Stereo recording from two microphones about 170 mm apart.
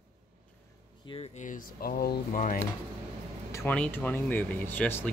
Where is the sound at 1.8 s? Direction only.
60° left (ahead or behind).